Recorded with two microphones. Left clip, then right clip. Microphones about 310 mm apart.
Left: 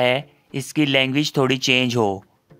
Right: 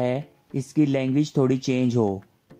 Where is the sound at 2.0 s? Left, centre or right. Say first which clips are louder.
Left 3 dB; left.